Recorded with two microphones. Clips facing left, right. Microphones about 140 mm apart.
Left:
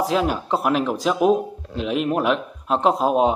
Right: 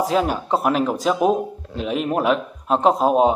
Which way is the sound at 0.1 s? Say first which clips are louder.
Right 1 dB; centre (ahead or behind).